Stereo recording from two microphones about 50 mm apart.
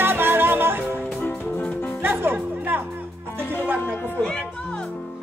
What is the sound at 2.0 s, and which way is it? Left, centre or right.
Music, right.